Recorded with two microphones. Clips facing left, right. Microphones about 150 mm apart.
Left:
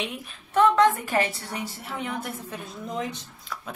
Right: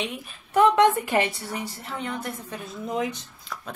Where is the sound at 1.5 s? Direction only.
5° left (ahead or behind).